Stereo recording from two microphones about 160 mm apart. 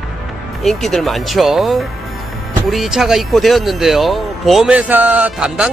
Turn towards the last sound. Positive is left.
turn(degrees=-5)  # may be behind; listen again after turning